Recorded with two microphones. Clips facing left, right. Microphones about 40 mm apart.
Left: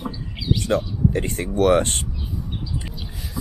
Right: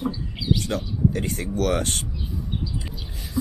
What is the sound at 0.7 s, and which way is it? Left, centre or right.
Speech, left.